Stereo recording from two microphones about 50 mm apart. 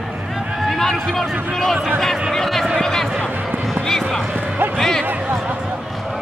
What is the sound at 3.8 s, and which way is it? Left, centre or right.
Music, centre.